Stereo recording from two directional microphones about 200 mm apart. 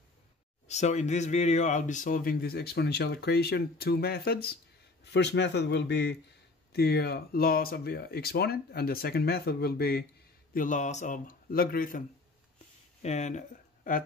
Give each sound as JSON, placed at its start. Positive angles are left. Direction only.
{"t": 0.7, "sound": "a man's voice", "side_deg": 35}
{"t": 10.5, "sound": "speech", "side_deg": 40}
{"t": 13.0, "sound": "speech", "side_deg": 35}